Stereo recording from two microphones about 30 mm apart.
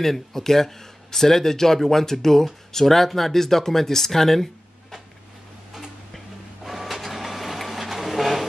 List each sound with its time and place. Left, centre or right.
0.0 s speech: centre
6.1 s printer: centre